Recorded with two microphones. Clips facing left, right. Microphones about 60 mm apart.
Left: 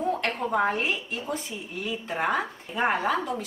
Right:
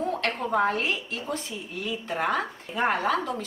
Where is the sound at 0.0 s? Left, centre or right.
Centre.